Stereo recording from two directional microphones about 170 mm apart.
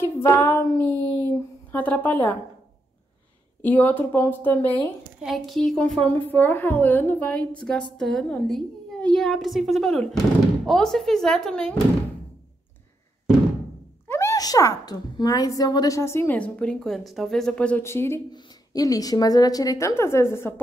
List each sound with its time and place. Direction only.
0.0 s speech: 15° left (ahead or behind)
3.6 s a woman's voice: 10° left (ahead or behind)
5.2 s a woman's voice: centre (ahead or behind)
14.0 s a woman's voice: 15° left (ahead or behind)